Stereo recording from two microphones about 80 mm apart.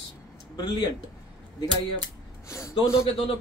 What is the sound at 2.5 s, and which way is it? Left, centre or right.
Speech, left.